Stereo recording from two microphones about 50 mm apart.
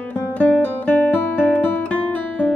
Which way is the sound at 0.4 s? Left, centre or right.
Left.